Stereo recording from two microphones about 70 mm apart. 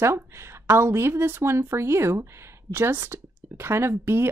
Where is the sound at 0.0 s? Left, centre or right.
Right.